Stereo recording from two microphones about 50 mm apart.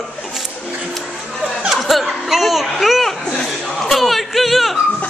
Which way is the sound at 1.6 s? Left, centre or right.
Centre.